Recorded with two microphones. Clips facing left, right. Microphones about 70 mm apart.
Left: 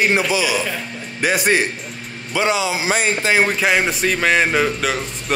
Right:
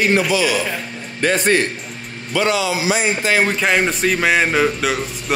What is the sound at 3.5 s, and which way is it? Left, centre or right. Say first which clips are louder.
Speech: even; centre.